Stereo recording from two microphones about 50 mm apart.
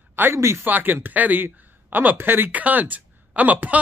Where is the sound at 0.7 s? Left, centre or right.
Right.